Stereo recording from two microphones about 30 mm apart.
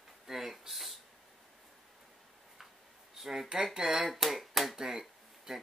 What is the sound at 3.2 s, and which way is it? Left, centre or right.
Speech, centre.